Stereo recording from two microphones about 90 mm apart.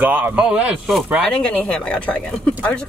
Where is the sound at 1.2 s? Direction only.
10° left (ahead or behind).